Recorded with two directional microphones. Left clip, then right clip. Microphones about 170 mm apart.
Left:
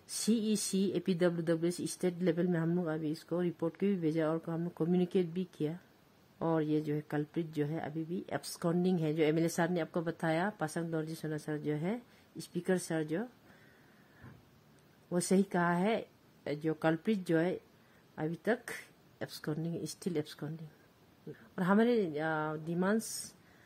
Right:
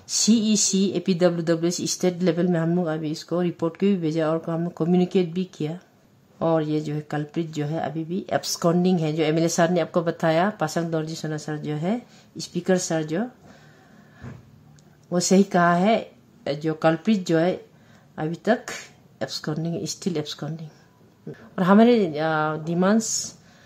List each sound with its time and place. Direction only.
0.0 s speech: 30° left (ahead or behind)
15.0 s speech: 35° left (ahead or behind)
21.5 s a woman's voice: 30° left (ahead or behind)